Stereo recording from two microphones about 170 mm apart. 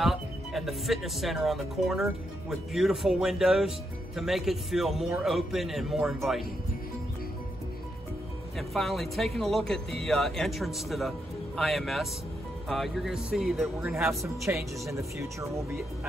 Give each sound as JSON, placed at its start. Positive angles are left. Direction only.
{"t": 0.0, "sound": "speech", "side_deg": 0}
{"t": 8.5, "sound": "speech", "side_deg": 0}
{"t": 13.9, "sound": "speech", "side_deg": -15}